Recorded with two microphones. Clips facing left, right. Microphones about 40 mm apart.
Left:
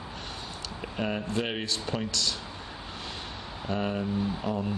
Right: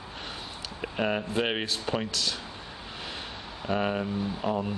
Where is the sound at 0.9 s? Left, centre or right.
Centre.